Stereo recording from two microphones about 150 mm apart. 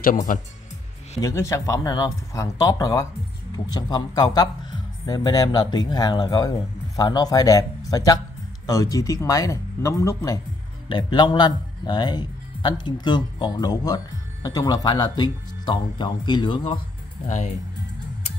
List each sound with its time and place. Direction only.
0.0 s speech: 65° left (ahead or behind)
1.2 s speech: 20° left (ahead or behind)